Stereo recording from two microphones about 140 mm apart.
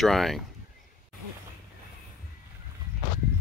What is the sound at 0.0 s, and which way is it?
Speech, centre (ahead or behind).